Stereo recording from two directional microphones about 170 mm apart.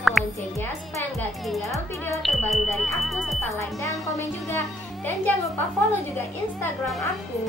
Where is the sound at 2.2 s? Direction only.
5° left (ahead or behind).